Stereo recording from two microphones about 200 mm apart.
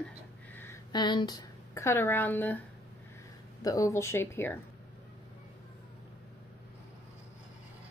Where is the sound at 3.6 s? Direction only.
15° left (ahead or behind).